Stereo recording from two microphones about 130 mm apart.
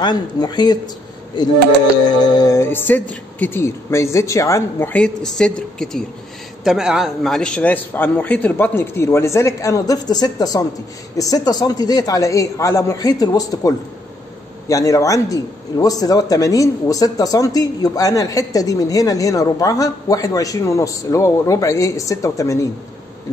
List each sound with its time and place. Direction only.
0.0 s speech: 30° left (ahead or behind)
2.0 s a man's voice: 35° left (ahead or behind)